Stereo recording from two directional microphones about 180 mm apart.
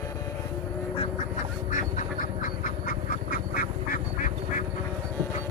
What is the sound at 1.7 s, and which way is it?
Quack, 45° left (ahead or behind).